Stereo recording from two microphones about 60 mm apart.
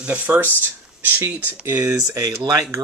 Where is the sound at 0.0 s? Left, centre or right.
Right.